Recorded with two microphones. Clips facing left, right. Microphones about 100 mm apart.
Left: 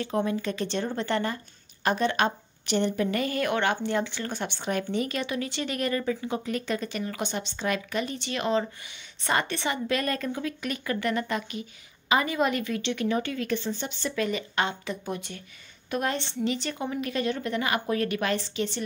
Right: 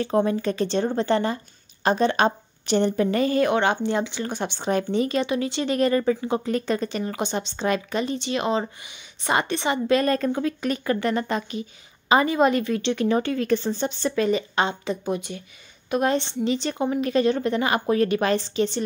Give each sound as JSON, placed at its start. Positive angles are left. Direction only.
{"t": 0.0, "sound": "a woman's voice", "side_deg": -35}